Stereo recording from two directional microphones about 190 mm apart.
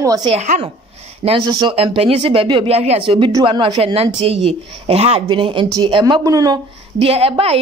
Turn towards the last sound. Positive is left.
turn(degrees=-30)  # may be behind; listen again after turning